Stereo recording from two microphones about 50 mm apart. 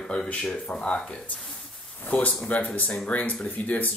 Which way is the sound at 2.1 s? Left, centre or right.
Left.